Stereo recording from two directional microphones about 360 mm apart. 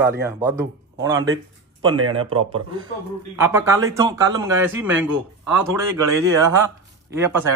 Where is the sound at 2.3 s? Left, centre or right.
Right.